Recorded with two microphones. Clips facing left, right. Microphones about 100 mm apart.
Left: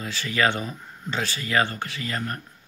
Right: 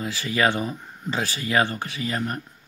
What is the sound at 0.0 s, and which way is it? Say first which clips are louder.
Speech: right 1 dB; 20° right (ahead or behind).